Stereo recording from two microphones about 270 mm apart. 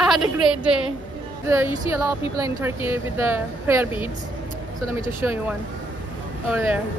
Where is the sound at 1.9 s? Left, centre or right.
Centre.